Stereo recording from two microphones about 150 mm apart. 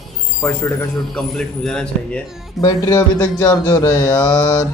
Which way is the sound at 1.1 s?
5° left (ahead or behind).